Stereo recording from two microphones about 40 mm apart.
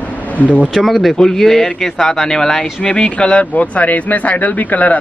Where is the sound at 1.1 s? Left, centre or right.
Centre.